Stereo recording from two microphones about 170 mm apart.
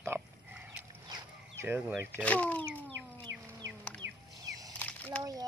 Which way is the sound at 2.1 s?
10° left (ahead or behind).